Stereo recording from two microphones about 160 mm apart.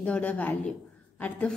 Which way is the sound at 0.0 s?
10° left (ahead or behind).